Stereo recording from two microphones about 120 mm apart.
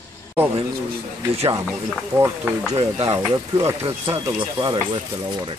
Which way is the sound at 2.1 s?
15° right (ahead or behind).